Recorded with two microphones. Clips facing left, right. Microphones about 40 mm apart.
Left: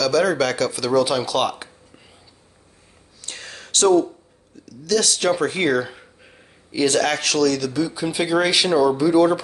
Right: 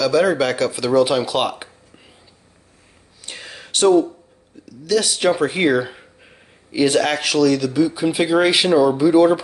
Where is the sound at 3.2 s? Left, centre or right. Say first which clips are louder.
Right 1 dB; centre.